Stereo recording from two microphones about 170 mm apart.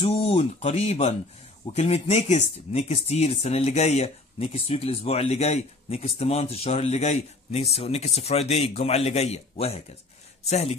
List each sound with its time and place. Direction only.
0.0 s speech: 35° left (ahead or behind)